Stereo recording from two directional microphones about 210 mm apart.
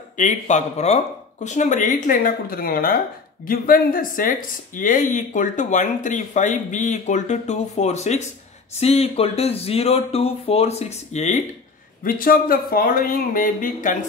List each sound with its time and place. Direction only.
0.2 s speech: 35° left (ahead or behind)